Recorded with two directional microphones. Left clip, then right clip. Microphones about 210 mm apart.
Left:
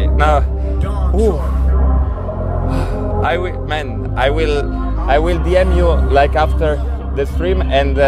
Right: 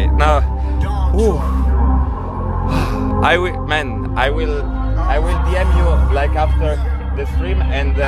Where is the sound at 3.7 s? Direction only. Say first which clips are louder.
Right 2 dB; centre (ahead or behind).